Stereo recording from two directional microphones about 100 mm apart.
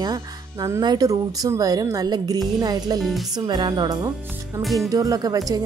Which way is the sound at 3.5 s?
45° right (ahead or behind).